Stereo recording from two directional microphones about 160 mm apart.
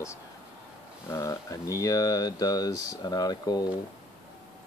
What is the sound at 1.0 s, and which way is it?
Speech, 20° left (ahead or behind).